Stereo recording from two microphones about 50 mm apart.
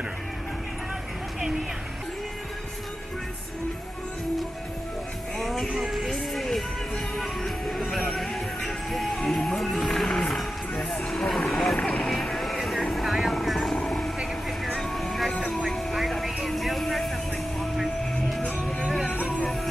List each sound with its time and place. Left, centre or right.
5.4 s music: centre
11.7 s music: centre
12.1 s vehicle: centre
14.8 s music: centre
15.5 s vehicle: centre
16.4 s a sound: centre
18.4 s music: left